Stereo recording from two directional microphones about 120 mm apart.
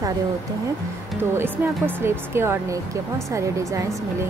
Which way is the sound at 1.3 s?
15° right (ahead or behind).